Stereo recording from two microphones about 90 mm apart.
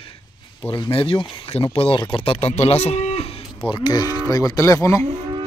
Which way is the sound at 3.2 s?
90° left.